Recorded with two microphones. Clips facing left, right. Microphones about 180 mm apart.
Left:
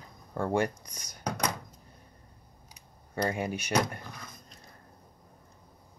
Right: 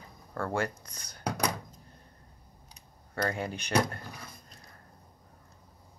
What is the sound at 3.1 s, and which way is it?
Speech, 15° left (ahead or behind).